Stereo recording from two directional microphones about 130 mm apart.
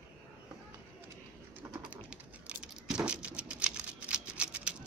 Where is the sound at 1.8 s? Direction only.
10° right (ahead or behind).